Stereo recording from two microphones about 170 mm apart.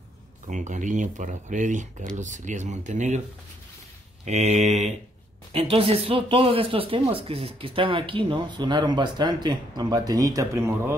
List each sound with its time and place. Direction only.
0.5 s speech: 45° right (ahead or behind)
4.2 s speech: 40° right (ahead or behind); by 11.0 s 15° right (ahead or behind)